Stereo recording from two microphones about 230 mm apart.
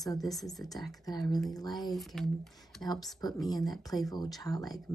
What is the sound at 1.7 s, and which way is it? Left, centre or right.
Speech, centre.